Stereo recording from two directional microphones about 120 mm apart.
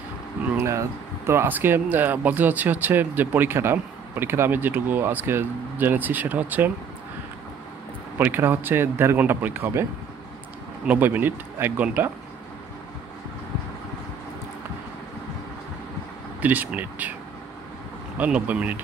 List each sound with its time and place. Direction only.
0.6 s speech: 25° right (ahead or behind)
8.2 s speech: 15° right (ahead or behind)
10.9 s speech: 15° right (ahead or behind)
16.3 s speech: 15° right (ahead or behind)
18.1 s speech: 10° right (ahead or behind)